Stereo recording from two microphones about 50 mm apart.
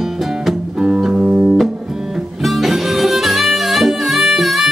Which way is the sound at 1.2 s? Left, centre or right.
Right.